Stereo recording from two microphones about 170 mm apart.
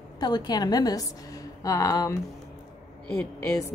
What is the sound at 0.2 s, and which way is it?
A woman's voice, 25° left (ahead or behind).